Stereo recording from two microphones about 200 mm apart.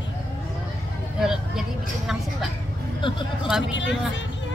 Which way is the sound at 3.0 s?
25° left (ahead or behind).